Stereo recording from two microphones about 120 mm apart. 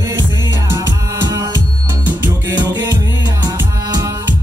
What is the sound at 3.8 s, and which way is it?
Music, 30° right (ahead or behind).